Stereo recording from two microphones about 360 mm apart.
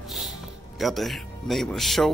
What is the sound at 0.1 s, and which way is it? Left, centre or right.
Speech, centre.